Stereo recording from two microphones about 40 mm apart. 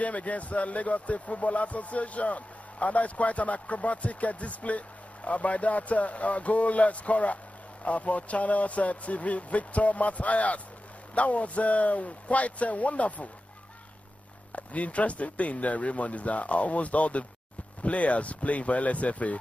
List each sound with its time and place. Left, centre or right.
0.0 s speech: left
14.5 s speech: left